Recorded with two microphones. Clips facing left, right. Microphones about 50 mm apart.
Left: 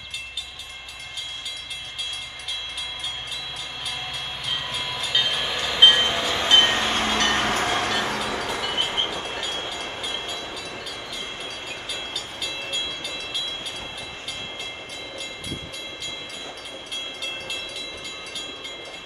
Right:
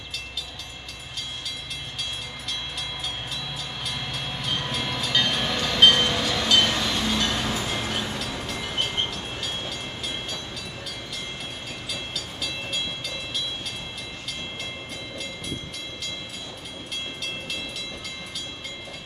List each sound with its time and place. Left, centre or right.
3.8 s train: centre; by 8.7 s left
8.7 s train: left
11.9 s train: centre